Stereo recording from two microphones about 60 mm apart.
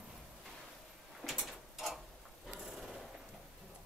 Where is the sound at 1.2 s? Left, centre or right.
Centre.